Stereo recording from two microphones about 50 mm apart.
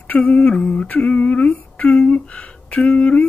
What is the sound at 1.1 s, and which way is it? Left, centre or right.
Humming, left.